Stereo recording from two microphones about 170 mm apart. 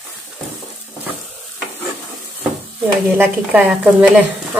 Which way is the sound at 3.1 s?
10° right (ahead or behind).